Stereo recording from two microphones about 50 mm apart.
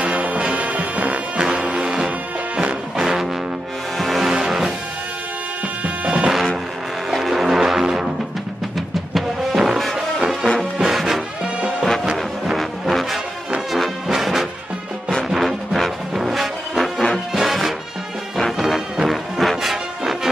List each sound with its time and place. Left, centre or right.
0.0 s music: right
3.0 s music: centre
4.0 s music: centre
4.3 s music: centre
6.0 s music: right
6.3 s music: centre
9.1 s music: centre